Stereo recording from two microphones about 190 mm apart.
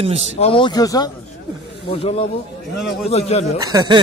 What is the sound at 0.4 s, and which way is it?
Speech, 30° left (ahead or behind).